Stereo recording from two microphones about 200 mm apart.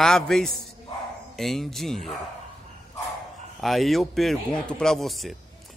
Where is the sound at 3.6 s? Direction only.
Centre (ahead or behind).